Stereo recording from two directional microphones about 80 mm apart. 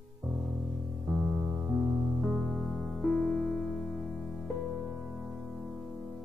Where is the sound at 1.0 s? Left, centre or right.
Centre.